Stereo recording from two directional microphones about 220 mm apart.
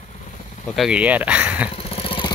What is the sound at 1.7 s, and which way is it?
Vehicle, 25° left (ahead or behind).